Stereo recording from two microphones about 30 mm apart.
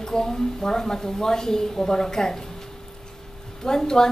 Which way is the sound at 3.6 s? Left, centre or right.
Left.